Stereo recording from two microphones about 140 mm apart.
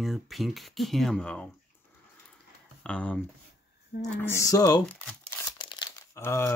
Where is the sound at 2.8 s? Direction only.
10° left (ahead or behind); by 4.8 s 25° left (ahead or behind).